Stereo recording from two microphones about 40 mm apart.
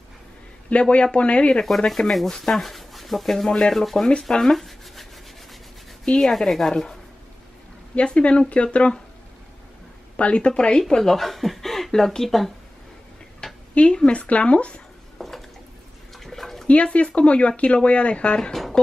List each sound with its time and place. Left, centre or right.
0.7 s speech: left
1.9 s speech: centre
6.0 s speech: centre
6.3 s speech: centre
7.9 s speech: left
10.1 s speech: left
10.8 s speech: centre
13.4 s a sound: centre
13.7 s speech: left
15.1 s a sound: centre
16.2 s bathtub: centre
16.6 s speech: left